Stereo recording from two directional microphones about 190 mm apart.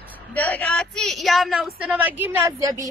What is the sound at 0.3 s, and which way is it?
A woman's voice, 10° left (ahead or behind).